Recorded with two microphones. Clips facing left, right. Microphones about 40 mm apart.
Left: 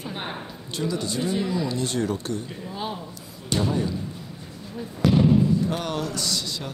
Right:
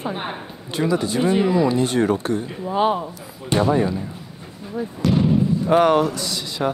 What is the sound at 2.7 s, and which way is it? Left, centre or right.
Speech, right.